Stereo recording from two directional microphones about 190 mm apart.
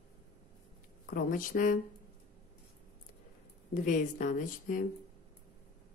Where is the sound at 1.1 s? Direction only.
45° left (ahead or behind).